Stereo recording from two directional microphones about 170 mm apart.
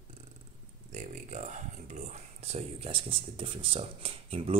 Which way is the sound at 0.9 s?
45° right (ahead or behind).